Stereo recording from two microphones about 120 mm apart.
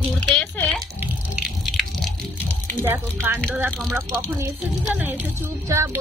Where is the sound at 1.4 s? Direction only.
Centre (ahead or behind).